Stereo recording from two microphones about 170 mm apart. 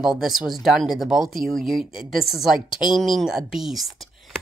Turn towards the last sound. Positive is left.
turn(degrees=0)  # may be behind; listen again after turning